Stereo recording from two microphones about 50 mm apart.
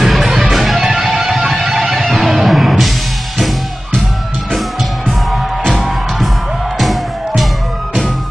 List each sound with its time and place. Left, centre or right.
0.0 s music: centre
1.0 s music: right
2.3 s music: centre
6.8 s music: centre